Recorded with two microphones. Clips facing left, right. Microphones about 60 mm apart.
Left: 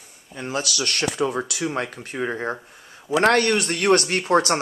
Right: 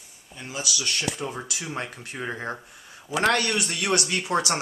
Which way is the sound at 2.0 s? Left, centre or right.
Left.